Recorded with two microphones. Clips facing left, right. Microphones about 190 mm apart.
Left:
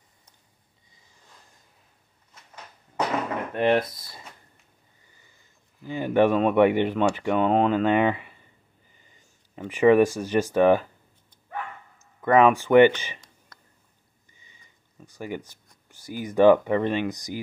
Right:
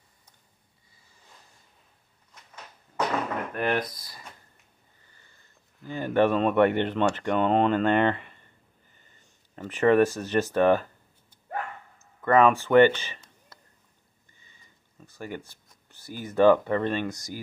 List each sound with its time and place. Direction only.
3.5 s speech: 30° left (ahead or behind)
5.1 s speech: 10° left (ahead or behind)
12.2 s speech: 10° left (ahead or behind)
14.3 s a sound: 15° left (ahead or behind)